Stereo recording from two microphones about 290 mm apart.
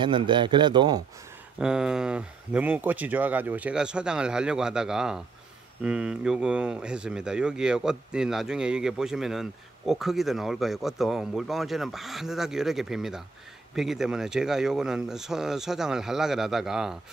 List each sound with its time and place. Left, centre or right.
0.0 s speech: centre
1.6 s speech: centre